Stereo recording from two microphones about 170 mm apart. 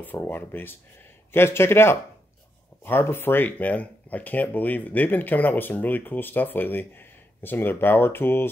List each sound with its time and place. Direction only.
0.0 s speech: 10° left (ahead or behind)